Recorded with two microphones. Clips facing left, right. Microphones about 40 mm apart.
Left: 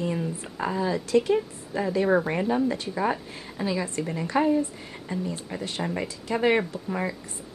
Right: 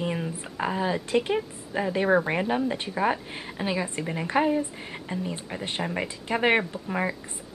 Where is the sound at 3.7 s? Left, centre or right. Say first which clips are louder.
Even; right.